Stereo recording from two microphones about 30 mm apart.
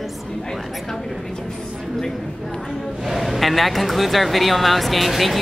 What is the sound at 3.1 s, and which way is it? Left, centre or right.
Speech, centre.